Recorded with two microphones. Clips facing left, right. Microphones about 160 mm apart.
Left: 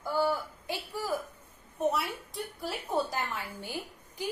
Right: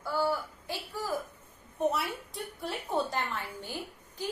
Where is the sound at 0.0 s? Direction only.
15° left (ahead or behind).